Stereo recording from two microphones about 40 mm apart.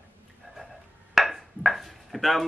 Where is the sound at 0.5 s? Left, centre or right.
Right.